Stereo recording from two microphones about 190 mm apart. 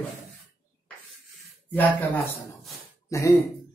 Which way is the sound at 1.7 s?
10° left (ahead or behind).